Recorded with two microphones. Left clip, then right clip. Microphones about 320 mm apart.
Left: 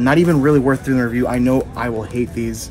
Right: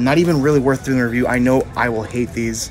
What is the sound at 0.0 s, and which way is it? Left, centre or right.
Speech, centre.